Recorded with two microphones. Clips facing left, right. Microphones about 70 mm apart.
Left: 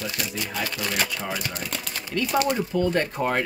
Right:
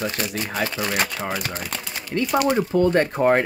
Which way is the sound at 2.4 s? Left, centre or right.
Right.